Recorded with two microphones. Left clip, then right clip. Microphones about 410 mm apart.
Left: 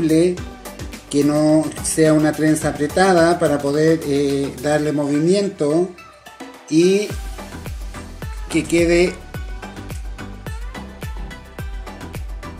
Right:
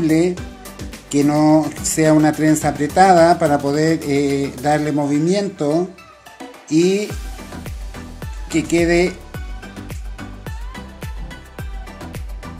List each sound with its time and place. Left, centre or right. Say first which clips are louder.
0.0 s speech: even; centre
0.3 s music: left 1 dB; centre
1.1 s speech: right 1 dB; right
8.5 s speech: even; centre
9.3 s music: left 1 dB; centre